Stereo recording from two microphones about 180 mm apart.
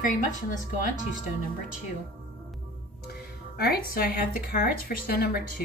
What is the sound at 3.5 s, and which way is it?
Speech, 60° left (ahead or behind).